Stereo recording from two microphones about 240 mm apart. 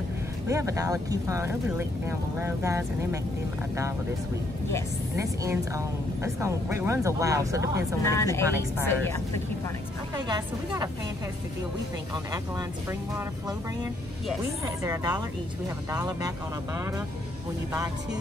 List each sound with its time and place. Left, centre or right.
0.5 s a woman's voice: centre
5.1 s a woman's voice: centre
8.0 s a woman's voice: centre
10.1 s a woman's voice: centre
15.9 s a woman's voice: centre